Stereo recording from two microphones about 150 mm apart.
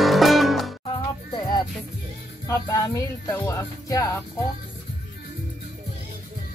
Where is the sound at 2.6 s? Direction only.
25° left (ahead or behind).